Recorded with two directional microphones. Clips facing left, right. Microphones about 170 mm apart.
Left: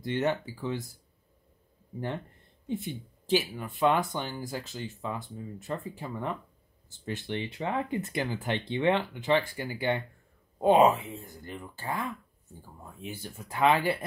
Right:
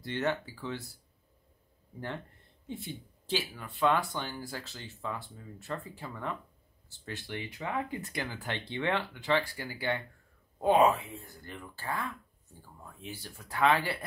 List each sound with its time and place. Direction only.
0.0 s speech: 15° left (ahead or behind)
2.7 s speech: 20° left (ahead or behind)